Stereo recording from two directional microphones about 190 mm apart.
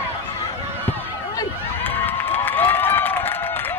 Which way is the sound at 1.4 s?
10° left (ahead or behind).